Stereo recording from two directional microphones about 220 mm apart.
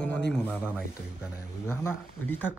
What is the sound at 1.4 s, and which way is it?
Speech, 10° left (ahead or behind).